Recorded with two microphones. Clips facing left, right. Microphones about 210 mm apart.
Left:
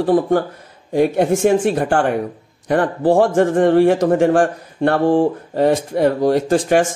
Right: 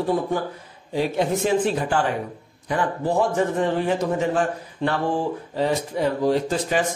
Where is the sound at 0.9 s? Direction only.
60° left (ahead or behind).